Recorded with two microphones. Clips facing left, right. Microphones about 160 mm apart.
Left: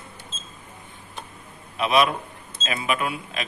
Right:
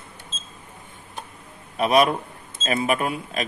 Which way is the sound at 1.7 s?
45° right (ahead or behind).